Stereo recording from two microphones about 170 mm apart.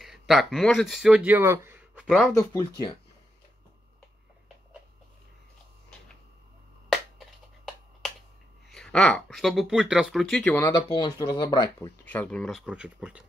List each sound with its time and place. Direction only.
0.0 s speech: centre (ahead or behind)
2.0 s speech: centre (ahead or behind)
6.9 s finger snapping: centre (ahead or behind)
8.6 s speech: centre (ahead or behind)
10.7 s speech: 25° left (ahead or behind)
12.0 s speech: 10° left (ahead or behind)